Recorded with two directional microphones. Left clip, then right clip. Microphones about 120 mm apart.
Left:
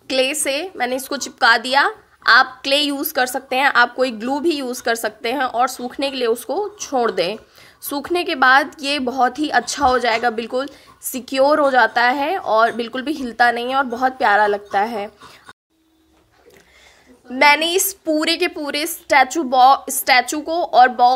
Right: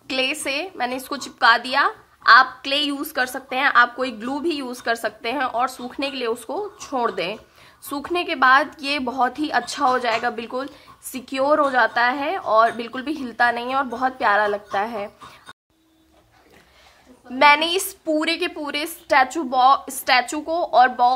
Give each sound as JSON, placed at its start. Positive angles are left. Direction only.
{"t": 0.1, "sound": "a woman's voice", "side_deg": 25}
{"t": 17.4, "sound": "a woman's voice", "side_deg": 25}